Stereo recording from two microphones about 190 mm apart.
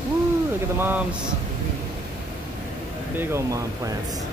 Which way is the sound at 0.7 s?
10° right (ahead or behind).